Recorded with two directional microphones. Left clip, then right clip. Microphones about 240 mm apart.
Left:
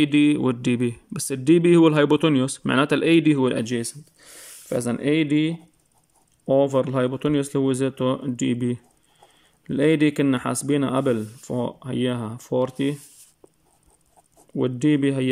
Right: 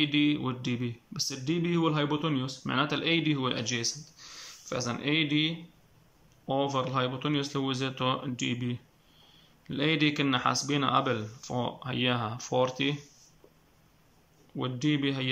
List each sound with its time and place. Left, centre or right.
0.0 s speech: left
14.6 s speech: left